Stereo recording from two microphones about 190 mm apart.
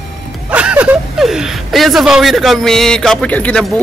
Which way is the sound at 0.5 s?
5° right (ahead or behind).